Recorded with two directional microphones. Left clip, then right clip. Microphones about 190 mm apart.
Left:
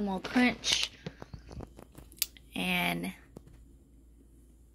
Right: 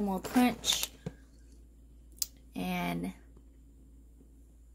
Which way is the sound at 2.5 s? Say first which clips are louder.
Left 5 dB; 5° right (ahead or behind).